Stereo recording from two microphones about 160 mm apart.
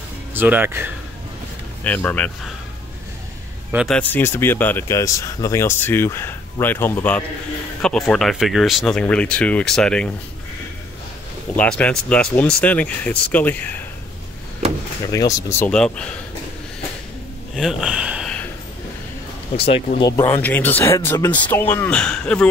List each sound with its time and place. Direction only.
0.3 s speech: 10° right (ahead or behind)
1.9 s speech: 10° left (ahead or behind)
3.7 s speech: centre (ahead or behind)
4.0 s speech: 15° left (ahead or behind)
11.5 s speech: 10° left (ahead or behind)
15.0 s speech: 20° left (ahead or behind)
15.7 s speech: 5° left (ahead or behind)
17.6 s speech: centre (ahead or behind)
19.5 s speech: 35° left (ahead or behind)
20.0 s speech: 20° left (ahead or behind)